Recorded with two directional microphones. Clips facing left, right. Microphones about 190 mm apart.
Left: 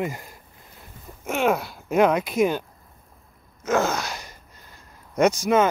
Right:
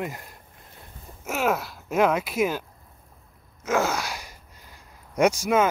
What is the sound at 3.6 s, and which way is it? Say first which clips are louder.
Gasp: left 2 dB; 10° right (ahead or behind).